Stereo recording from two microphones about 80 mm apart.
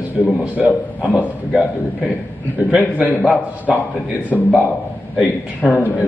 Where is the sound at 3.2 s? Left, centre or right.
Centre.